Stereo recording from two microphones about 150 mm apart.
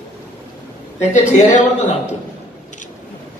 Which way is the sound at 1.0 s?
50° left (ahead or behind).